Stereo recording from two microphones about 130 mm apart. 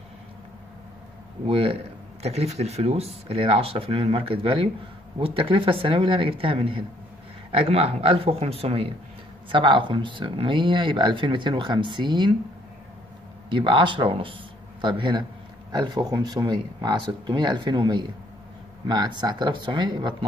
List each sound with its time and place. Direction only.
1.5 s speech: 45° right (ahead or behind)
2.2 s speech: 55° right (ahead or behind); by 12.4 s 35° right (ahead or behind)
13.5 s speech: 40° right (ahead or behind)